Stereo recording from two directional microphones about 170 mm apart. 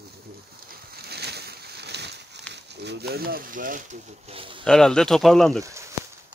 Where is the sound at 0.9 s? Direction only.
70° right (ahead or behind).